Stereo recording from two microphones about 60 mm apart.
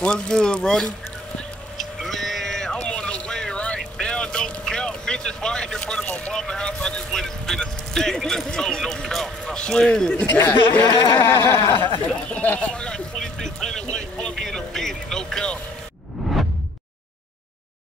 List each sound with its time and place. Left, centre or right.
0.0 s speech: centre
1.8 s a sound: centre
6.3 s speech: centre
10.3 s speech: left
10.9 s a sound: left
11.1 s a sound: left
12.3 s speech: left
12.6 s vehicle: centre
14.3 s speech: centre